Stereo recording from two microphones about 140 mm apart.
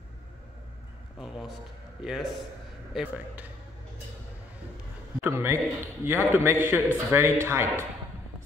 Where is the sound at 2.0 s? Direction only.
Centre (ahead or behind).